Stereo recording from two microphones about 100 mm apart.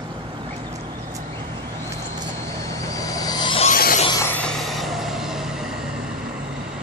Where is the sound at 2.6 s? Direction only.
35° left (ahead or behind).